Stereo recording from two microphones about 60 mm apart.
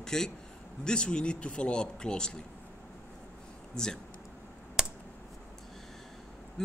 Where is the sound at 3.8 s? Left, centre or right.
Centre.